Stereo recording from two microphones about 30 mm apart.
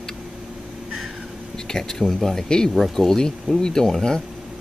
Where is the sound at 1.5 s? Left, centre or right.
Centre.